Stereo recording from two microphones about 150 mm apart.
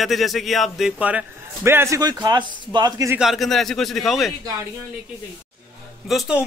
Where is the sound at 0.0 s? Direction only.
Centre (ahead or behind); by 2.0 s 15° right (ahead or behind).